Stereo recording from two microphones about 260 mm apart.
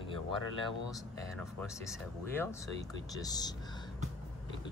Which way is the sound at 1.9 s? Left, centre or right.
Centre.